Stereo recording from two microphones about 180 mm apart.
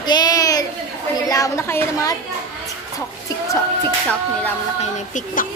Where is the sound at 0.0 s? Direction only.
20° left (ahead or behind).